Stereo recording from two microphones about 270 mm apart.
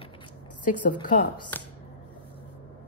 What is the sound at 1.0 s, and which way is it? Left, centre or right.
Speech, left.